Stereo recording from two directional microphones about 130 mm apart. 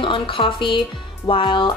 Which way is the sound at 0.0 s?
40° left (ahead or behind).